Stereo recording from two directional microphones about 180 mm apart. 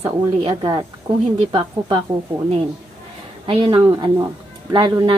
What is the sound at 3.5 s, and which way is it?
A woman's voice, 25° right (ahead or behind).